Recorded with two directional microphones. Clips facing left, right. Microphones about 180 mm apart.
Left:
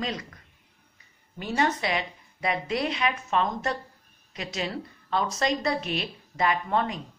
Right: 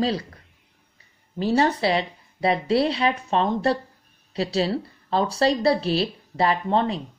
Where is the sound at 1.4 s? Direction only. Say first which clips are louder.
Right 6 dB; 35° right (ahead or behind).